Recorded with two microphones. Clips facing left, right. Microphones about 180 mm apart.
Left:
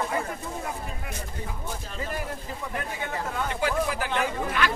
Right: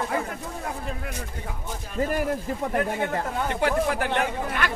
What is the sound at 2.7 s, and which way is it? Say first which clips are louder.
Speech: right 7 dB; 55° right (ahead or behind).